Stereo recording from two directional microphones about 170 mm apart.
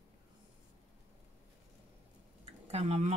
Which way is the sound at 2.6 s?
40° right (ahead or behind).